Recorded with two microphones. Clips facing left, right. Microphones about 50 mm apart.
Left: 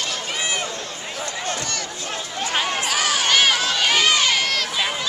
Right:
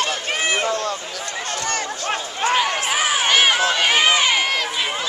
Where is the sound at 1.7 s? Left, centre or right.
Right.